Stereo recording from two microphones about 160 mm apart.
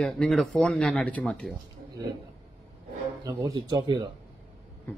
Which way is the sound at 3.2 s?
25° right (ahead or behind).